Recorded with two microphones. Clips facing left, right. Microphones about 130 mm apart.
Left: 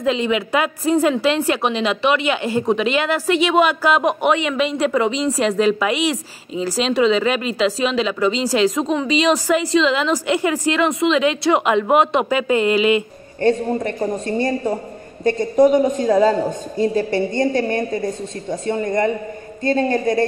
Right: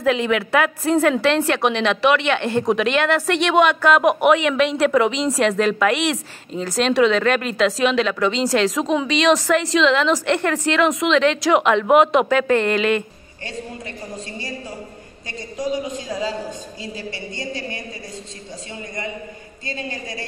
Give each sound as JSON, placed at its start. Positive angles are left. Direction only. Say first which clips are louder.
{"t": 0.5, "sound": "a woman's voice", "louder": "even", "side_deg": 5}
{"t": 13.4, "sound": "a woman's voice", "louder": "left 15 dB", "side_deg": 55}